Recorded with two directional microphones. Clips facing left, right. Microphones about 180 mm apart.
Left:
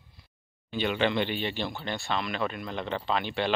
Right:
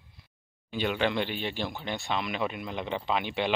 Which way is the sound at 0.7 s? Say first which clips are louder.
Left 1 dB; 5° right (ahead or behind).